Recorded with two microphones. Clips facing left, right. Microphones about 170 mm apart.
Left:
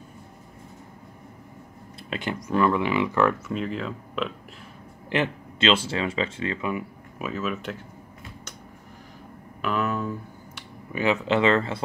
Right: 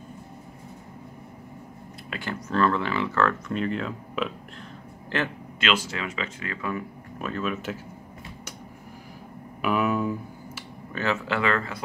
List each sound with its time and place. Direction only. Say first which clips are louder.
2.0 s speech: left 3 dB; 20° left (ahead or behind)
3.5 s speech: right 1 dB; centre (ahead or behind)
5.1 s speech: left 3 dB; 25° left (ahead or behind)
7.2 s speech: even; 5° left (ahead or behind)
9.6 s a sound: right 2 dB; 10° right (ahead or behind)
10.9 s speech: left 4 dB; 15° left (ahead or behind)